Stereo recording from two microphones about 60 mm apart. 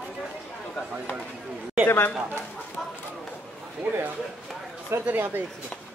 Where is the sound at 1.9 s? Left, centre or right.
Left.